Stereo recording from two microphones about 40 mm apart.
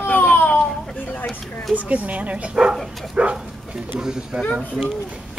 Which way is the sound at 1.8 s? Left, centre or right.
Right.